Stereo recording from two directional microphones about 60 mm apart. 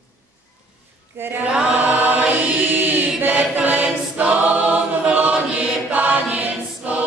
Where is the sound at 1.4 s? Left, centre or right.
Centre.